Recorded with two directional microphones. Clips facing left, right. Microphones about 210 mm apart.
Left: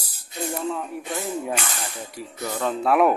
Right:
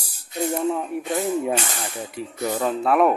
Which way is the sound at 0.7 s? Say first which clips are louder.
Right 4 dB; 20° right (ahead or behind).